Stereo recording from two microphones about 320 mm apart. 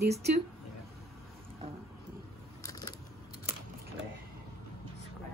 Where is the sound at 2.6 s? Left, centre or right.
Centre.